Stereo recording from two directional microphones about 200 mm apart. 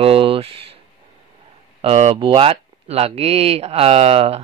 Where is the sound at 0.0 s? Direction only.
25° right (ahead or behind).